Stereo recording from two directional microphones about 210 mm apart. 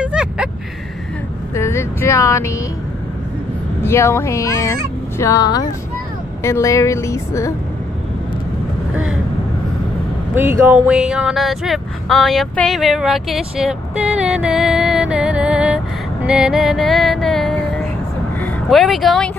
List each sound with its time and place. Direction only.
0.0 s vehicle: 5° right (ahead or behind)
1.5 s vehicle: 15° left (ahead or behind)
3.8 s speech: 10° left (ahead or behind)
10.3 s speech: 10° right (ahead or behind)
16.3 s music: centre (ahead or behind)
18.4 s speech: centre (ahead or behind)